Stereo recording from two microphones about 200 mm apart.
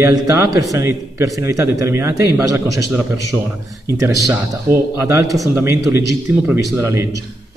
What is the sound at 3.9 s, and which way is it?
A man's voice, 15° right (ahead or behind).